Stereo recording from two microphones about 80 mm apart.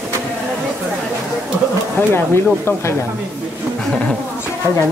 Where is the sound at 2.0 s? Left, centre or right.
Left.